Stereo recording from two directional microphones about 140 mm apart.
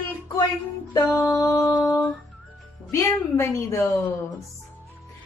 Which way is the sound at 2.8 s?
20° left (ahead or behind).